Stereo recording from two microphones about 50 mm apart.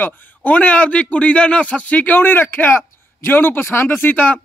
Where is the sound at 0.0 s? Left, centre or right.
Left.